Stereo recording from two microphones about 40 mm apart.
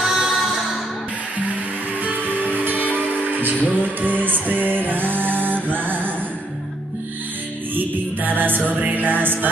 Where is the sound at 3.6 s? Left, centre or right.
Right.